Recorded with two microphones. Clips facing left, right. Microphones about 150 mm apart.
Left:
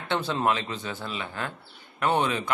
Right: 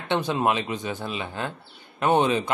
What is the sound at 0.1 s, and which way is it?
Speech, 15° right (ahead or behind).